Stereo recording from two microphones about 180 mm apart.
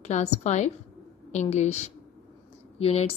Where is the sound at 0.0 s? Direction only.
40° left (ahead or behind).